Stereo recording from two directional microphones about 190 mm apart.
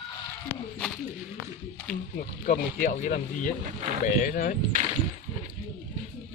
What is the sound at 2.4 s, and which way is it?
Speech, 45° left (ahead or behind).